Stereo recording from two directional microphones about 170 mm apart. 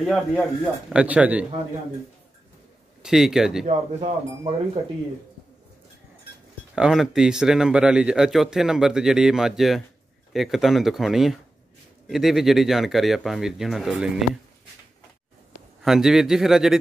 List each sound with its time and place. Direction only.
0.0 s speech: centre (ahead or behind)
3.0 s speech: 5° right (ahead or behind)
3.6 s speech: 40° right (ahead or behind)
6.7 s speech: 5° right (ahead or behind)
15.8 s speech: centre (ahead or behind)